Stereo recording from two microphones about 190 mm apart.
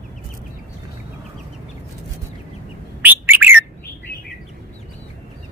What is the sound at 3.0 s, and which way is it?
Bird, 10° right (ahead or behind).